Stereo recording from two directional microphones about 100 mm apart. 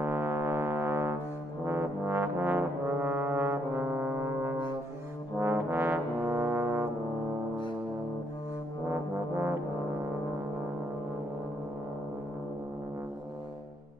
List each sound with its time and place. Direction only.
0.0 s music: 25° right (ahead or behind)
1.7 s brass instrument: 20° right (ahead or behind)
8.8 s brass instrument: 25° right (ahead or behind)